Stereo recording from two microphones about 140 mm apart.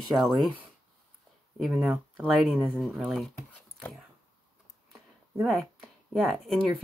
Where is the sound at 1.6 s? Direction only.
Centre (ahead or behind).